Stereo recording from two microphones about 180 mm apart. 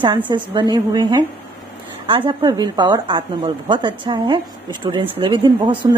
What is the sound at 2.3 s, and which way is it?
A woman's voice, 25° right (ahead or behind).